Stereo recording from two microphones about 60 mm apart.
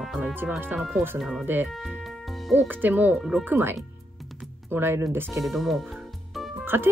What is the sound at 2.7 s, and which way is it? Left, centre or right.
Speech, right.